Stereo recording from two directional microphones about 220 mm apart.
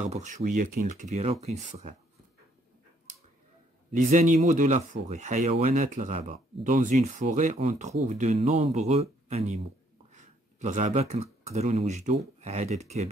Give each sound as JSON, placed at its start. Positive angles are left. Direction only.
{"t": 0.0, "sound": "speech", "side_deg": -30}
{"t": 3.9, "sound": "speech", "side_deg": -35}
{"t": 10.1, "sound": "a sound", "side_deg": -30}
{"t": 11.4, "sound": "speech", "side_deg": -30}